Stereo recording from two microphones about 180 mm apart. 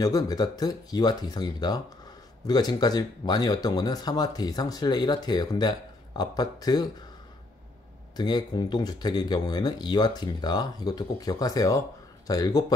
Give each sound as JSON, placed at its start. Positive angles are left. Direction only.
{"t": 0.0, "sound": "speech", "side_deg": 20}
{"t": 8.2, "sound": "speech", "side_deg": 20}